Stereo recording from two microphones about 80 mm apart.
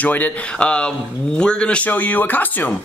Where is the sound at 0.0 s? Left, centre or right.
Centre.